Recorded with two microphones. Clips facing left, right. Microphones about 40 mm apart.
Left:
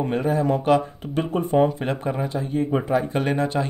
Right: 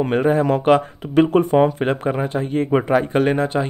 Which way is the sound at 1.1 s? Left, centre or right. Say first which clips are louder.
Right 10 dB; right.